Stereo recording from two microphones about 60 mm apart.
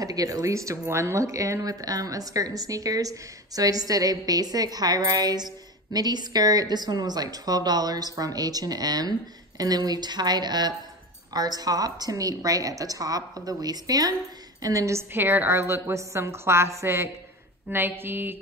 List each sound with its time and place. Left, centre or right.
0.0 s a woman's voice: right
11.3 s a woman's voice: right
14.6 s a woman's voice: right
15.1 s a woman's voice: right
17.6 s speech: right